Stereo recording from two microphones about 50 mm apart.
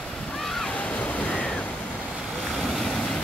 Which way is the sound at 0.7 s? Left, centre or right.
Left.